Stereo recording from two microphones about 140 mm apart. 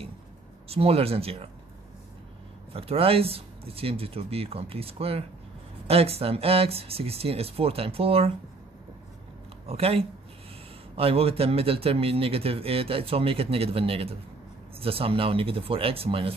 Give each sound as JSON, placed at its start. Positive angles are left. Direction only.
{"t": 0.7, "sound": "speech", "side_deg": -45}
{"t": 2.7, "sound": "speech", "side_deg": -45}
{"t": 9.7, "sound": "speech", "side_deg": -45}